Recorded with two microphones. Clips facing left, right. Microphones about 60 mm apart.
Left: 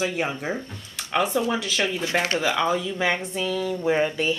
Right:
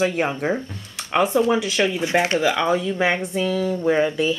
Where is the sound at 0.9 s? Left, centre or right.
Centre.